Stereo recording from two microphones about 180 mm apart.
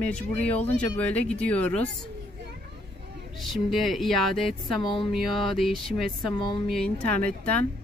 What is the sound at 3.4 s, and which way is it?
Speech, centre (ahead or behind).